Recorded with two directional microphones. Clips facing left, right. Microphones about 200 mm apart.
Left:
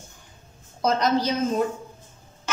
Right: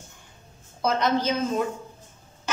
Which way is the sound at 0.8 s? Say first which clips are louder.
Left 1 dB; 40° left (ahead or behind).